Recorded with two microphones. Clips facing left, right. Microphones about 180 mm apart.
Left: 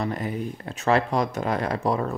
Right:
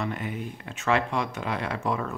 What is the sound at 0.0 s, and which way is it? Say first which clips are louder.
Speech: left 4 dB; 35° left (ahead or behind).